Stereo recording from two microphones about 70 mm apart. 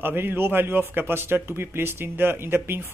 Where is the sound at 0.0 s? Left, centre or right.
Right.